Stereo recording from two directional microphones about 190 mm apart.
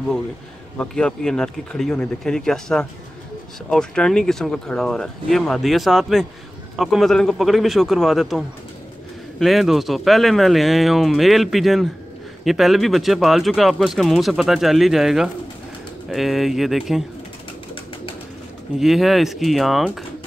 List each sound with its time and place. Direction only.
0.7 s speech: 5° left (ahead or behind)
18.8 s speech: centre (ahead or behind)